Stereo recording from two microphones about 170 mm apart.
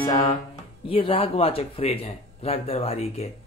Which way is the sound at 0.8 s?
30° left (ahead or behind).